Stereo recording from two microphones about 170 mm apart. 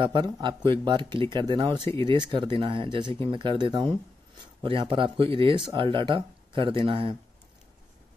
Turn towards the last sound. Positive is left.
turn(degrees=-30)  # may be behind; listen again after turning